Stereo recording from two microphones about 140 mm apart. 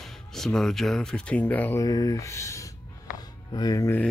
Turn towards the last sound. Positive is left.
turn(degrees=25)  # may be behind; listen again after turning